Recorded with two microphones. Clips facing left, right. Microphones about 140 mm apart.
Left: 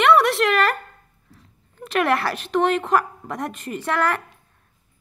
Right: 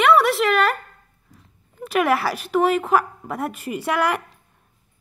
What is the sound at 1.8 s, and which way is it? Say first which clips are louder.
A woman's voice: right 1 dB; 5° right (ahead or behind).